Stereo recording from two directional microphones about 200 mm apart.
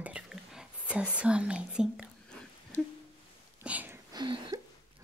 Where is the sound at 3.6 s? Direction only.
5° right (ahead or behind).